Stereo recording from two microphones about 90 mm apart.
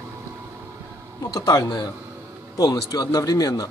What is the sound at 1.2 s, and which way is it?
Speech, 45° left (ahead or behind).